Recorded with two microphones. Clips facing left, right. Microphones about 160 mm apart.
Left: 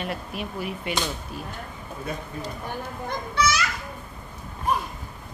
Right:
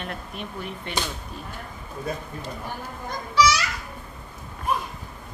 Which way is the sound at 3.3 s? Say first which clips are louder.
Right 4 dB; 55° left (ahead or behind).